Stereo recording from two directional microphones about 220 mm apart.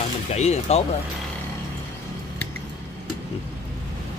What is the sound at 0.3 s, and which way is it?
Speech, 30° left (ahead or behind).